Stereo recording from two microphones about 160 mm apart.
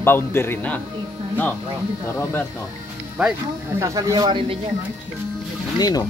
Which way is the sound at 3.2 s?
5° right (ahead or behind).